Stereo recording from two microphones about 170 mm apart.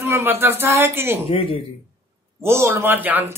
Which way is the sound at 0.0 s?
15° right (ahead or behind).